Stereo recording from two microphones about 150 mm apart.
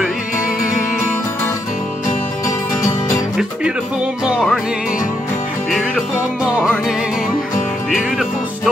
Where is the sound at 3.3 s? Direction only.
5° right (ahead or behind).